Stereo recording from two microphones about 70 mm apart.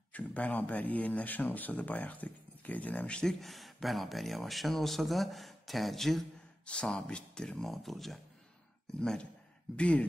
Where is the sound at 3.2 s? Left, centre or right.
Centre.